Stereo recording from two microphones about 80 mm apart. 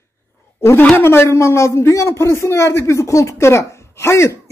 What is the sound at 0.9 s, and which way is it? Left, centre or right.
Speech, left.